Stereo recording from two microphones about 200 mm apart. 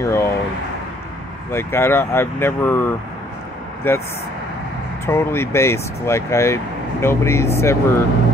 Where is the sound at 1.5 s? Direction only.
10° left (ahead or behind).